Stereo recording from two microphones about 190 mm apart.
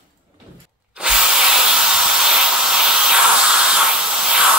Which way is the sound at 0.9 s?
5° right (ahead or behind).